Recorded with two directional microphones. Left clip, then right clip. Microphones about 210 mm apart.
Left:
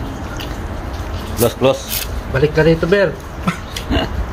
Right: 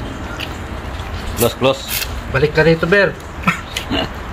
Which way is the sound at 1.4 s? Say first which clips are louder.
Left 1 dB; 5° right (ahead or behind).